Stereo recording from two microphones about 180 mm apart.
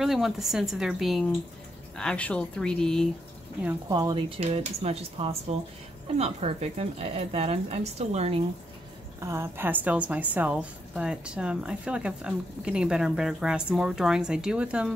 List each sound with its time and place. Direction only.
0.0 s a woman's voice: centre (ahead or behind)
3.9 s speech: 25° right (ahead or behind)
4.4 s speech: 35° right (ahead or behind)
9.2 s a woman's voice: 15° right (ahead or behind)